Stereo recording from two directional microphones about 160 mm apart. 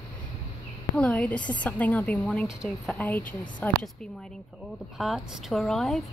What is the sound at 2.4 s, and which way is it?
Speech, 5° right (ahead or behind).